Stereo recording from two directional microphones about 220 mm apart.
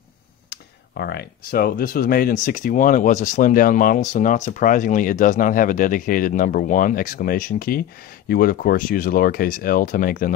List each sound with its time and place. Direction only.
0.5 s speech: 45° left (ahead or behind)